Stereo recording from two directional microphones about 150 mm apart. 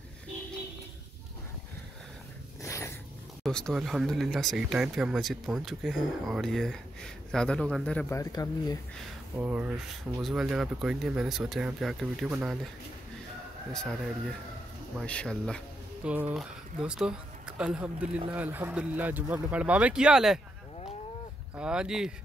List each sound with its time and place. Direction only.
2.6 s a sound: 20° left (ahead or behind)
3.4 s speech: 5° left (ahead or behind)
8.1 s speech: 25° left (ahead or behind)
9.4 s speech: 10° right (ahead or behind)
15.0 s speech: 5° left (ahead or behind)
16.0 s speech: 10° right (ahead or behind)
21.5 s speech: 5° right (ahead or behind)